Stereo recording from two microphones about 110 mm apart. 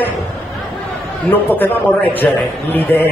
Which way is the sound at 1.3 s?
15° left (ahead or behind).